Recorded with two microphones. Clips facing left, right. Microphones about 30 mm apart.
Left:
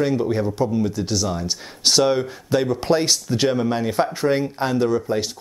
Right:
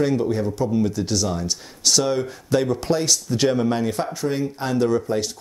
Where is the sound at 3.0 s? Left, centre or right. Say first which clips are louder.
Left 1 dB; left.